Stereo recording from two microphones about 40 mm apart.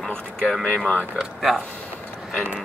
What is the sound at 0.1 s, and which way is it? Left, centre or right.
Speech, centre.